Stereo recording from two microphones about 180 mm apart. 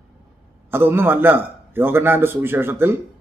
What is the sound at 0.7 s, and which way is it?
A man's voice, 10° right (ahead or behind).